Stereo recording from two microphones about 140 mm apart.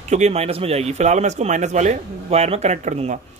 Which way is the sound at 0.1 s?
50° right (ahead or behind).